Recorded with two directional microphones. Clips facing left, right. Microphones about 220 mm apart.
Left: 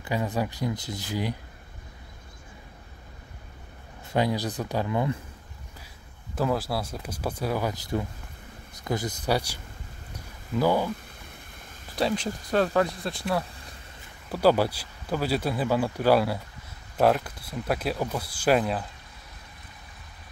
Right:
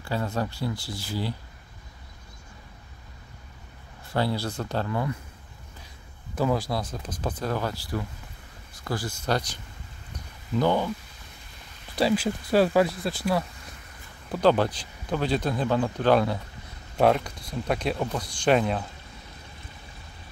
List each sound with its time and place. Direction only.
0.0 s speech: 15° left (ahead or behind)
4.1 s speech: 15° left (ahead or behind)
6.3 s speech: centre (ahead or behind)
8.8 s speech: 20° left (ahead or behind)
11.9 s speech: 5° right (ahead or behind)